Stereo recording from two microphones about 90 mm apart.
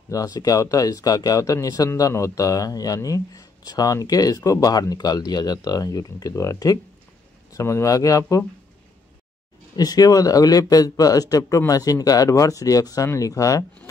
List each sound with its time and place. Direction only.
0.1 s speech: 45° left (ahead or behind)
9.8 s speech: 45° left (ahead or behind)